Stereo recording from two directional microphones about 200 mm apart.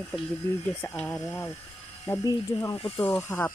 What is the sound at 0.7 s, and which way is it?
Speech, 10° left (ahead or behind).